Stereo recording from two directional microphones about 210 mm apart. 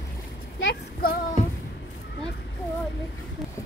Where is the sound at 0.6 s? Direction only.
45° left (ahead or behind).